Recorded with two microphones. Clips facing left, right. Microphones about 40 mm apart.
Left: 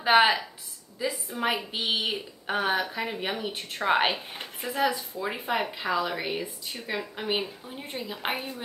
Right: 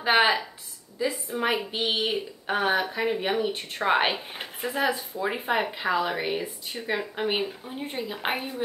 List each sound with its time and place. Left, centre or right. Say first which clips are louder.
0.0 s speech: left 1 dB; centre